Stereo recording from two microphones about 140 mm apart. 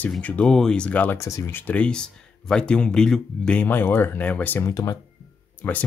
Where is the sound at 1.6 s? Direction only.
10° left (ahead or behind).